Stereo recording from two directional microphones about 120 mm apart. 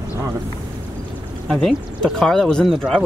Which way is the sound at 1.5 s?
Centre (ahead or behind).